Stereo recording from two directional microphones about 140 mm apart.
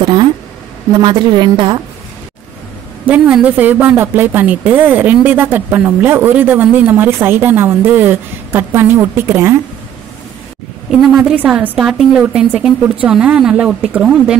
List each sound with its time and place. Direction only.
0.0 s a sound: 30° right (ahead or behind)
0.9 s a woman's voice: 35° right (ahead or behind)
3.1 s speech: 10° right (ahead or behind)
11.0 s a woman's voice: centre (ahead or behind)